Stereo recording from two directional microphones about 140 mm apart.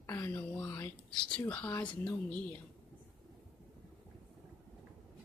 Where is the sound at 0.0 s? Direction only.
15° left (ahead or behind).